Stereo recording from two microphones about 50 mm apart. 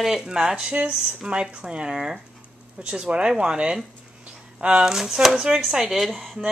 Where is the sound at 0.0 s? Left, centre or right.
Centre.